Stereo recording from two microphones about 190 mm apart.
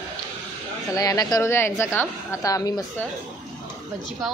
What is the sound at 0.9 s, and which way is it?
A woman's voice, 20° left (ahead or behind).